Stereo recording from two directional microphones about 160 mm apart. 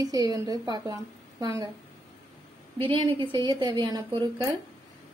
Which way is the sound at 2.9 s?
30° right (ahead or behind).